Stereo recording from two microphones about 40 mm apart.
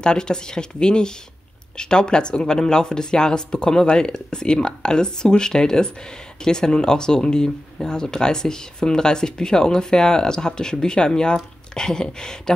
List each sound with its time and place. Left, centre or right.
0.0 s speech: centre